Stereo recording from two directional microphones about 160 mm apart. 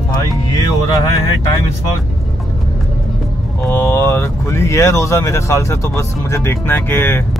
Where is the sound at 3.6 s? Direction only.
15° left (ahead or behind).